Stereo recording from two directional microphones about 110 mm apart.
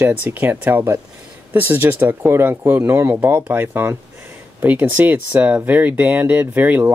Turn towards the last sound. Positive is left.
turn(degrees=-15)  # may be behind; listen again after turning